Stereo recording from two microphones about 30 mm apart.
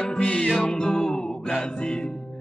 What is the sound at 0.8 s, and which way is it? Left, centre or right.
Music, centre.